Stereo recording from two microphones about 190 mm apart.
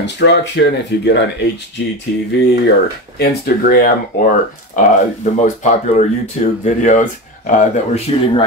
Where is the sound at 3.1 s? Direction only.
55° left (ahead or behind).